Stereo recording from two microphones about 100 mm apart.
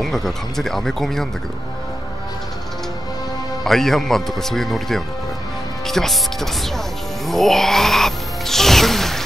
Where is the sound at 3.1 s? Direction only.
40° left (ahead or behind).